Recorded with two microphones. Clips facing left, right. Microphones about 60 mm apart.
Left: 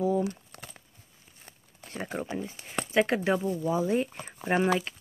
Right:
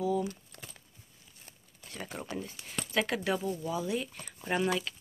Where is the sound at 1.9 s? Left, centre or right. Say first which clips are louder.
Left 6 dB; left.